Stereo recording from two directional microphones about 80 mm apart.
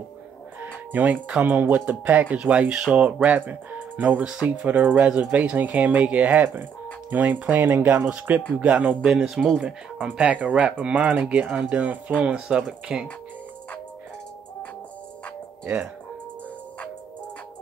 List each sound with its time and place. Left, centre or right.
0.6 s music: right
1.4 s speech: right; by 9.6 s centre
10.0 s speech: centre
15.6 s speech: right